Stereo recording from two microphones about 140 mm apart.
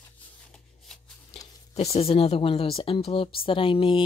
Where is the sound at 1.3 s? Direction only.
50° left (ahead or behind).